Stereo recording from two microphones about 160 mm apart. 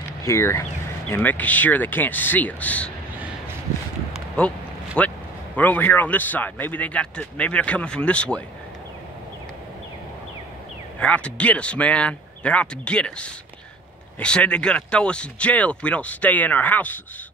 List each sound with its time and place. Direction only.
0.2 s speech: 20° left (ahead or behind)
4.4 s speech: 5° left (ahead or behind)
11.0 s speech: 5° left (ahead or behind)